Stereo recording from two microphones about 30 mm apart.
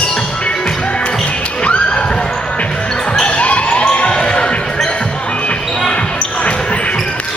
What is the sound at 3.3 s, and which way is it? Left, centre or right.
Basketball bounce, left.